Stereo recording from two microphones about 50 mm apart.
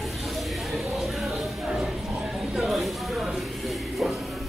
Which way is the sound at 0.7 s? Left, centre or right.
Centre.